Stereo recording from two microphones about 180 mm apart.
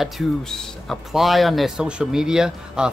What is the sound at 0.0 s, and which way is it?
Speech, centre (ahead or behind).